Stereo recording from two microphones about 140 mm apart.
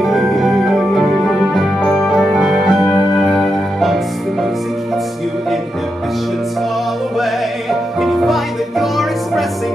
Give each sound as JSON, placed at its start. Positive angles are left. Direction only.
{"t": 0.0, "sound": "organ", "side_deg": 0}
{"t": 1.8, "sound": "music", "side_deg": 15}
{"t": 2.0, "sound": "music", "side_deg": -5}
{"t": 8.0, "sound": "music", "side_deg": 0}